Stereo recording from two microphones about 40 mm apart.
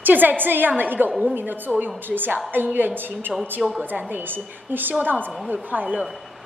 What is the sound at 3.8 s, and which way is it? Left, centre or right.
A woman's voice, right.